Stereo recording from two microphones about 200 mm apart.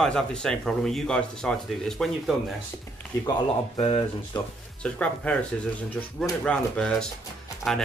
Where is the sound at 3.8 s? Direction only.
25° left (ahead or behind).